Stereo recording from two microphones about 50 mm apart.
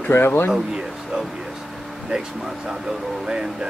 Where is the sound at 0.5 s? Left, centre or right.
Centre.